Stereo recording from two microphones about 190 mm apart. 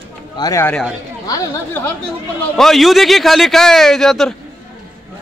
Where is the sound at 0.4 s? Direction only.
15° left (ahead or behind).